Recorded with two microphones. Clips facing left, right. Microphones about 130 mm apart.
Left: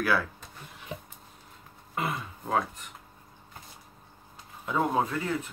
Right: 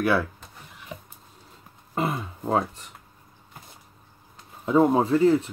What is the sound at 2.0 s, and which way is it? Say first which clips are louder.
Speech: right 5 dB; 30° right (ahead or behind).